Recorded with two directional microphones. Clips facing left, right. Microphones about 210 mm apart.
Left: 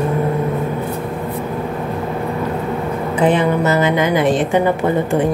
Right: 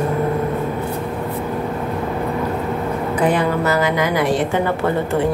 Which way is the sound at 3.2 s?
25° left (ahead or behind).